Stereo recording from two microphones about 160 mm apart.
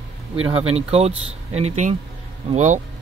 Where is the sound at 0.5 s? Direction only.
40° right (ahead or behind).